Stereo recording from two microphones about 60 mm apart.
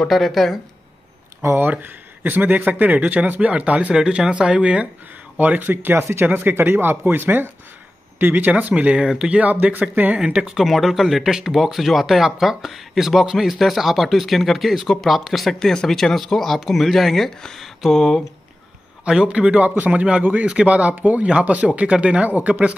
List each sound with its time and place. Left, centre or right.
0.1 s speech: centre
1.4 s speech: right
1.7 s speech: right
5.4 s speech: right
10.2 s speech: centre
10.6 s speech: centre
19.0 s speech: centre